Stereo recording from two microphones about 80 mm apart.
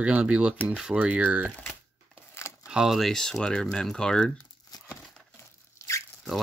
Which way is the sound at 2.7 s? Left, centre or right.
Centre.